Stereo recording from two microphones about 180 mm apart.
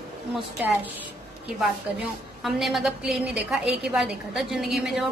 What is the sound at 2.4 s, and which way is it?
A woman's voice, centre (ahead or behind).